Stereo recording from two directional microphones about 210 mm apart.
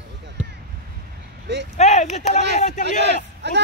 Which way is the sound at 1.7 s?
30° left (ahead or behind).